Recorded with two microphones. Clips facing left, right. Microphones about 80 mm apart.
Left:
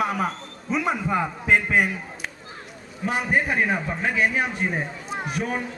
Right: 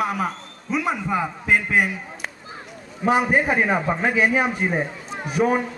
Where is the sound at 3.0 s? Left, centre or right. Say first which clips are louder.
Right 5 dB; right.